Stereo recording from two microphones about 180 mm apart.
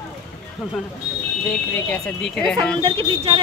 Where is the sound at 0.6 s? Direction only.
Centre (ahead or behind).